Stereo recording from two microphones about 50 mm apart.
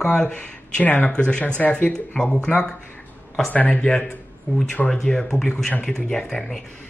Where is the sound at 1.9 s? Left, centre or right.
Centre.